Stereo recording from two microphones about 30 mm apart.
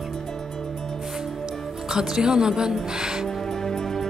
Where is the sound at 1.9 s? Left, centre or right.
Right.